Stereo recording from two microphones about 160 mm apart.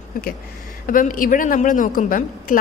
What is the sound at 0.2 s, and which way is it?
A woman's voice, 60° left (ahead or behind).